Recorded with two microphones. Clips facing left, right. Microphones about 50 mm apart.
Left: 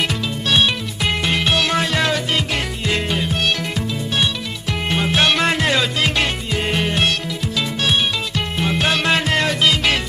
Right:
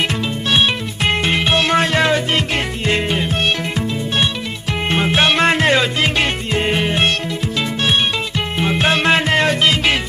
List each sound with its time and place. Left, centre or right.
0.5 s music: right
4.8 s music: right
8.5 s music: centre